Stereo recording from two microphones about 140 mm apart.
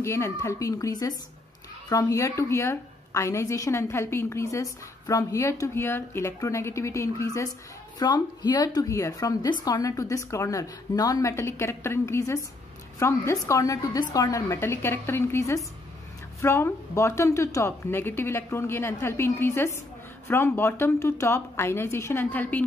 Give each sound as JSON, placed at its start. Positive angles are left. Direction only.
{"t": 0.0, "sound": "a woman's voice", "side_deg": 20}